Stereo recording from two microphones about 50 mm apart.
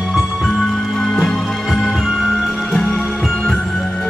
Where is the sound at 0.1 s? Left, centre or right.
Centre.